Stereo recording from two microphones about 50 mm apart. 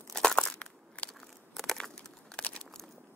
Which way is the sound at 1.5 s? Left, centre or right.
Centre.